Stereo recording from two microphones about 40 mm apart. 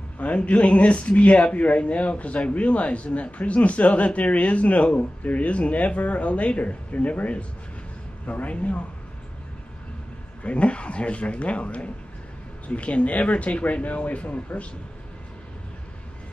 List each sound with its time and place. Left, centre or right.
0.2 s speech: left
10.4 s speech: left